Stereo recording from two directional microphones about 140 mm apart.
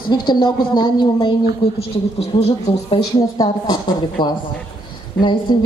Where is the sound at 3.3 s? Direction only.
30° left (ahead or behind).